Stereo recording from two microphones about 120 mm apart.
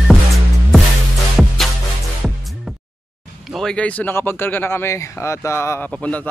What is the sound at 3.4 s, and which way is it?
Speech, centre (ahead or behind).